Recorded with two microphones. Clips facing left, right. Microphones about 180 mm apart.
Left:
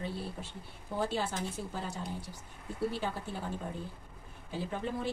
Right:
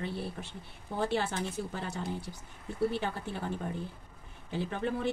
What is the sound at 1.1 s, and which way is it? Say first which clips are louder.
A woman's voice: right 3 dB; 65° right (ahead or behind).